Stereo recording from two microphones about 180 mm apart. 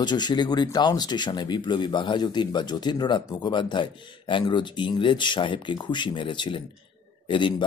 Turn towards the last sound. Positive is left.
turn(degrees=25)  # may be behind; listen again after turning